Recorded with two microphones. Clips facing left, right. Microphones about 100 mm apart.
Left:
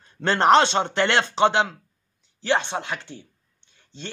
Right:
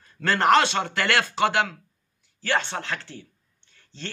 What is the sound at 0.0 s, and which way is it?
A woman's voice, 25° left (ahead or behind).